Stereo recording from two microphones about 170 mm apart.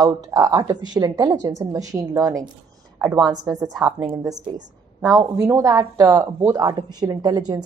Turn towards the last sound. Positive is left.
turn(degrees=-25)  # may be behind; listen again after turning